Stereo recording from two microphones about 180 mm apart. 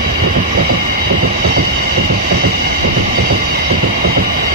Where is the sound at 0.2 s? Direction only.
60° right (ahead or behind).